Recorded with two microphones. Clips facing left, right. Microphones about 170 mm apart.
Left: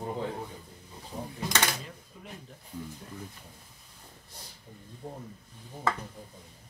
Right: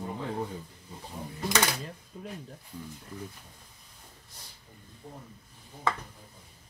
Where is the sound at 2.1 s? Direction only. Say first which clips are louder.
Right 9 dB; 40° right (ahead or behind).